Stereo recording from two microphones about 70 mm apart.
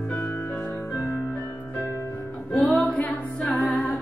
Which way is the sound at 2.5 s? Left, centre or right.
Centre.